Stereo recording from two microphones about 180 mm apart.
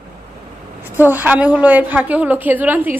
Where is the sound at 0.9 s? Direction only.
10° right (ahead or behind).